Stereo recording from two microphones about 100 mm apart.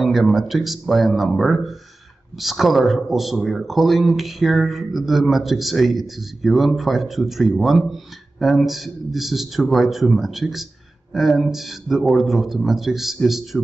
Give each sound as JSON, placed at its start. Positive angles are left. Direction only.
{"t": 0.0, "sound": "speech", "side_deg": 0}